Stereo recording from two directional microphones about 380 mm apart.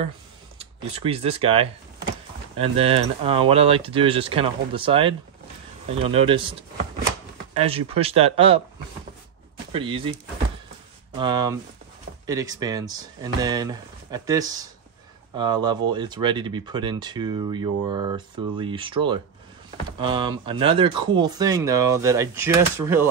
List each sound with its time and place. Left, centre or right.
0.9 s speech: centre
9.7 s speech: centre
11.1 s speech: centre